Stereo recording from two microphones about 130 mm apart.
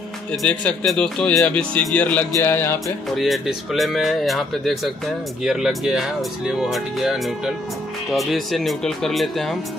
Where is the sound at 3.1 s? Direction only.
Centre (ahead or behind).